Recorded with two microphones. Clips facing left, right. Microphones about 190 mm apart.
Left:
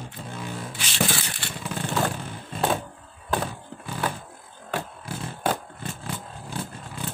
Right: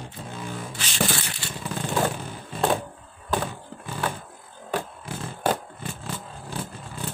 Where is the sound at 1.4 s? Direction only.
60° left (ahead or behind).